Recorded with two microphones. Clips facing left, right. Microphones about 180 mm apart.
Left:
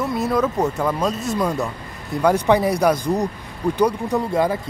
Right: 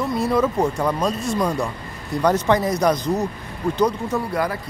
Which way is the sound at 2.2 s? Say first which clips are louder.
Left 2 dB; 10° left (ahead or behind).